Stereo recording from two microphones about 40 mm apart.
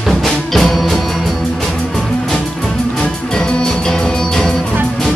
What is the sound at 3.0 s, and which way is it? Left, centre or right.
Music, left.